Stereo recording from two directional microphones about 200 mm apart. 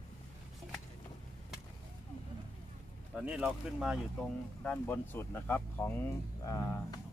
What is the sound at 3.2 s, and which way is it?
Speech, 5° right (ahead or behind).